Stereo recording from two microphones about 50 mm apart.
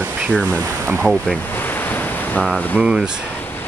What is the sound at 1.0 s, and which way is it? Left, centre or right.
Speech, centre.